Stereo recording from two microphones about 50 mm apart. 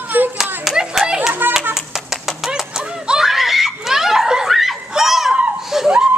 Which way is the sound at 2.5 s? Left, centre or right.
Centre.